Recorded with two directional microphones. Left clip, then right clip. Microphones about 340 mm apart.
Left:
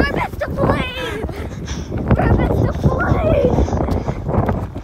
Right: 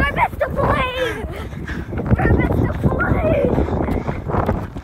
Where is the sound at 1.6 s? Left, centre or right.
Centre.